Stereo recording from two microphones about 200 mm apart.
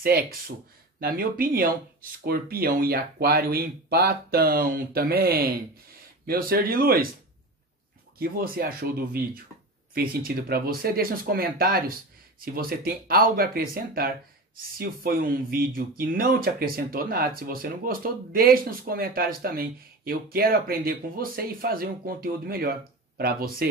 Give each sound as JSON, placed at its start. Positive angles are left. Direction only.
{"t": 0.0, "sound": "speech", "side_deg": -50}
{"t": 8.2, "sound": "speech", "side_deg": -45}